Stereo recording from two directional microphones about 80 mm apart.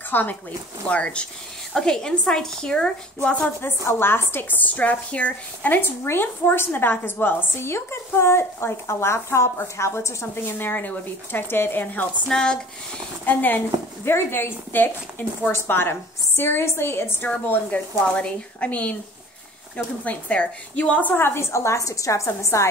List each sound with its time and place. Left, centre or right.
0.1 s speech: left
0.8 s a woman's voice: centre
3.6 s speech: left; by 12.5 s centre
13.2 s a woman's voice: left
17.5 s a woman's voice: centre
20.1 s a woman's voice: centre
21.1 s a woman's voice: left